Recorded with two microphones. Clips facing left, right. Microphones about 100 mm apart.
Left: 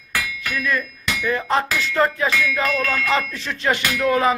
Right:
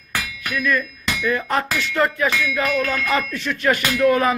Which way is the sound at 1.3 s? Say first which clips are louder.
Left 2 dB; 30° left (ahead or behind).